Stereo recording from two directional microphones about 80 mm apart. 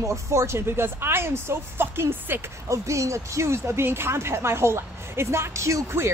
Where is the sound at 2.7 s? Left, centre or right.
Right.